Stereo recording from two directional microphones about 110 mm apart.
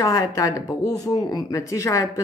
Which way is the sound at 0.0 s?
30° left (ahead or behind).